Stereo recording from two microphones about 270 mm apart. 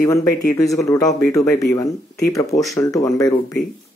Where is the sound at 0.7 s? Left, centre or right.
Centre.